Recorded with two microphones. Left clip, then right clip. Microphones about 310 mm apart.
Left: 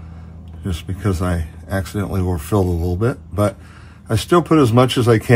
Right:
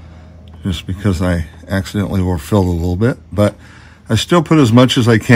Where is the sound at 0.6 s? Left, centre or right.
Right.